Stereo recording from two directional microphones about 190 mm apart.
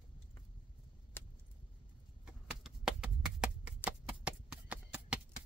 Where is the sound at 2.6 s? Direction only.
5° right (ahead or behind).